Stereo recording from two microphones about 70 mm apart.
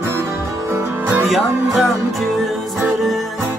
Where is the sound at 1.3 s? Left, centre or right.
Centre.